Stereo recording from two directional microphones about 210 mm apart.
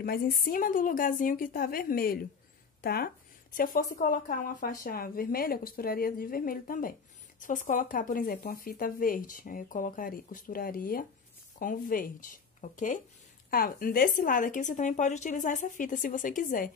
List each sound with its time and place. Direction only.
0.0 s a woman's voice: 45° left (ahead or behind)